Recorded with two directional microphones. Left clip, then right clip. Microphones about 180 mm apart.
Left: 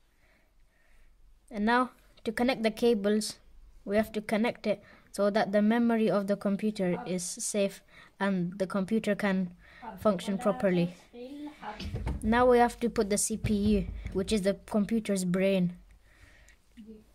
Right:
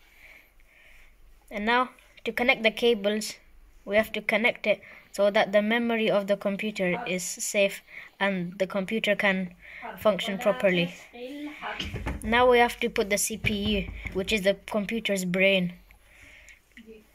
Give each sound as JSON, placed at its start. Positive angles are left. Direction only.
{"t": 1.5, "sound": "speech", "side_deg": 45}
{"t": 12.3, "sound": "speech", "side_deg": 40}